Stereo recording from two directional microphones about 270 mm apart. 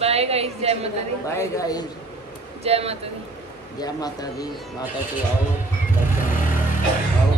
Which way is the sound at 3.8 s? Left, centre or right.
Centre.